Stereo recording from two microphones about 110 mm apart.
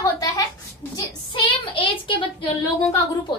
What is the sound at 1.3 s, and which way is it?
Speech, 50° left (ahead or behind).